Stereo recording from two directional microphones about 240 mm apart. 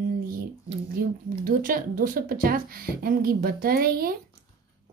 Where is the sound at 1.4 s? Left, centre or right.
Right.